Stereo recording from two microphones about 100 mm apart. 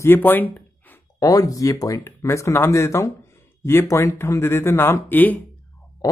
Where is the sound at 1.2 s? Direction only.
35° left (ahead or behind); by 5.4 s 20° left (ahead or behind).